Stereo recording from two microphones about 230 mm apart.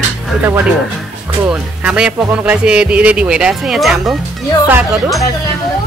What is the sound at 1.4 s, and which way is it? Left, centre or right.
Speech, centre.